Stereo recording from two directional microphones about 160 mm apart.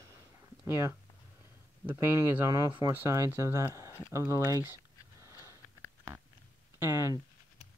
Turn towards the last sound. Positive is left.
turn(degrees=-15)  # may be behind; listen again after turning